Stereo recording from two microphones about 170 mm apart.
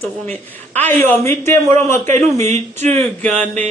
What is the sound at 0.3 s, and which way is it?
A woman's voice, 10° left (ahead or behind).